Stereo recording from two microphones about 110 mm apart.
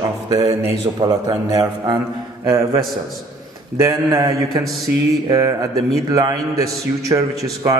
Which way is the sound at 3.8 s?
35° right (ahead or behind).